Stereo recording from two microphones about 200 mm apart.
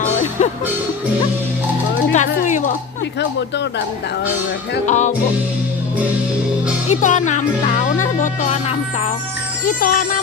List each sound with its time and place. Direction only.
0.4 s speech: 35° left (ahead or behind)
2.1 s a sound: 40° left (ahead or behind)
3.2 s speech: 60° left (ahead or behind)
4.8 s speech: 35° left (ahead or behind)
6.9 s speech: 40° left (ahead or behind)
9.7 s music: 45° left (ahead or behind)